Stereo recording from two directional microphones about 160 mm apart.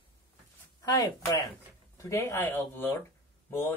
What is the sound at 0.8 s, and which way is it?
Speech, 25° left (ahead or behind).